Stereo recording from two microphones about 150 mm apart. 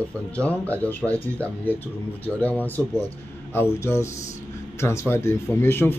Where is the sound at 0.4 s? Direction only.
10° left (ahead or behind).